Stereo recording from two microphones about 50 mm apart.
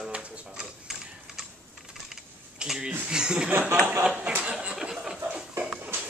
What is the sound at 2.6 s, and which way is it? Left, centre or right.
Speech, centre.